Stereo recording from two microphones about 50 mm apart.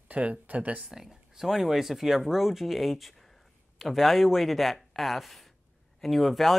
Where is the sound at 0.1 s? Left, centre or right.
Right.